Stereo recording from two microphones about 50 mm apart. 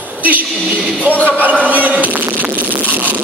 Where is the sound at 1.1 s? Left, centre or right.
Left.